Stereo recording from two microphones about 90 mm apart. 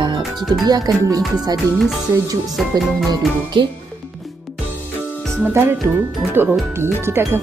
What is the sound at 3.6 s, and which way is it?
Speech, 75° right (ahead or behind).